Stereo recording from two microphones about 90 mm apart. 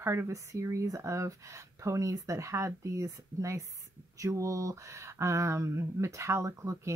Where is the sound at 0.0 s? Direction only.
30° right (ahead or behind).